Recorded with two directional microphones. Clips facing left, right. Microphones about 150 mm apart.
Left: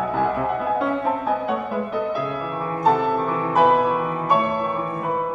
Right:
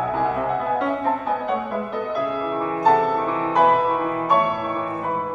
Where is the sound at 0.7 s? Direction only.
5° left (ahead or behind).